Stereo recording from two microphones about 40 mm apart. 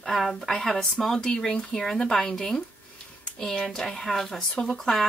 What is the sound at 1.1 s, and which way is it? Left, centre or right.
Speech, centre.